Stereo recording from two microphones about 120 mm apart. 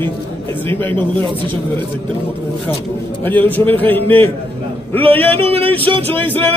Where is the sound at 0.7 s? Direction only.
15° left (ahead or behind).